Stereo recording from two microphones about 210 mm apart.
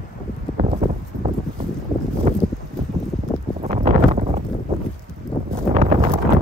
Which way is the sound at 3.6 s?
30° right (ahead or behind).